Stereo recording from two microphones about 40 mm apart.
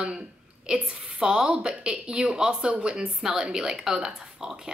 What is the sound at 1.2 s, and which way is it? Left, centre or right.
A woman's voice, right.